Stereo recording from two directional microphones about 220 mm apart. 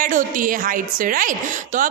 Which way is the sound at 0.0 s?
40° right (ahead or behind).